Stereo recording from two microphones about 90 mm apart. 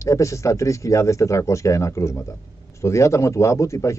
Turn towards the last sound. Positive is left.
turn(degrees=35)  # may be behind; listen again after turning